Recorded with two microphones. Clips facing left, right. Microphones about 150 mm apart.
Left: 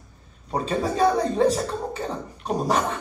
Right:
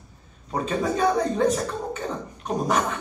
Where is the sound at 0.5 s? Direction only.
35° left (ahead or behind).